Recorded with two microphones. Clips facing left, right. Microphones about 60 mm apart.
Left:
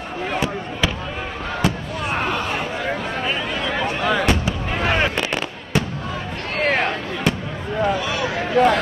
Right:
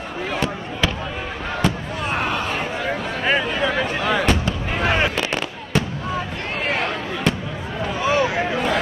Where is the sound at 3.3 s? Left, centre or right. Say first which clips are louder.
Right 7 dB; right.